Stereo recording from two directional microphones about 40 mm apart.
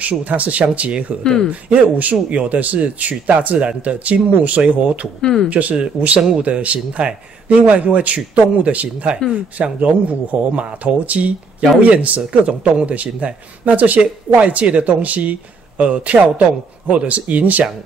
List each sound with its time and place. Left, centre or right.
0.0 s speech: right
1.2 s speech: centre
1.5 s speech: right
5.2 s speech: centre
5.5 s speech: right
17.3 s speech: right